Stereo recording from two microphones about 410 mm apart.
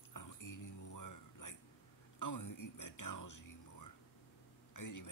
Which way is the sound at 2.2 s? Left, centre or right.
Left.